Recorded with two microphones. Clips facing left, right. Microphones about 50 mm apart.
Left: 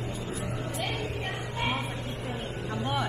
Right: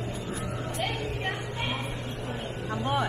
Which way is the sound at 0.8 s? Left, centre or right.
Centre.